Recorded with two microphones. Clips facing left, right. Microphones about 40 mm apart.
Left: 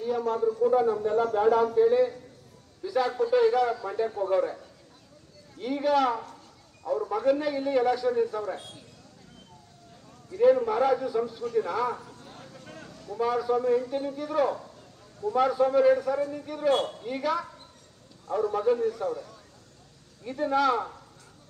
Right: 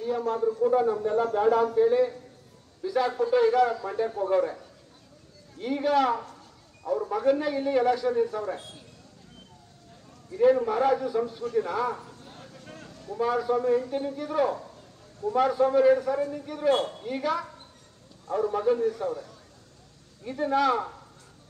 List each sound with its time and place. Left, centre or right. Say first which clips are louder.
0.6 s a man's voice: even; centre
10.3 s a man's voice: even; centre
12.4 s vehicle: left 1 dB; left
13.2 s a man's voice: even; centre
20.2 s a man's voice: even; centre